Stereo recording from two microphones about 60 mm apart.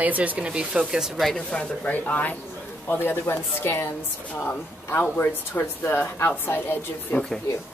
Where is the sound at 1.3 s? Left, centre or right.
Centre.